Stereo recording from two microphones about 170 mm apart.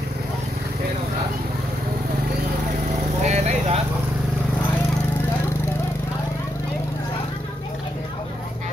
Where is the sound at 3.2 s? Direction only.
40° right (ahead or behind).